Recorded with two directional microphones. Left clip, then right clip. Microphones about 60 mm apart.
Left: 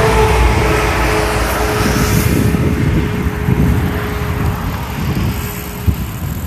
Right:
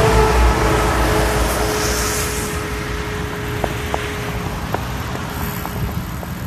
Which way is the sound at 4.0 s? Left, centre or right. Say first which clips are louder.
Left 3 dB; centre.